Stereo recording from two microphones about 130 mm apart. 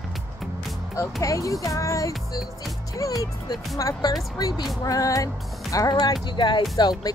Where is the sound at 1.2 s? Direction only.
25° left (ahead or behind).